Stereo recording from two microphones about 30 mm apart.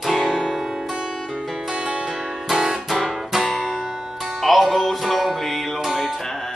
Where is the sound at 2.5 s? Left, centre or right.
Centre.